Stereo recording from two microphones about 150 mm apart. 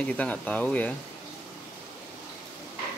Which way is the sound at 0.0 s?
10° left (ahead or behind).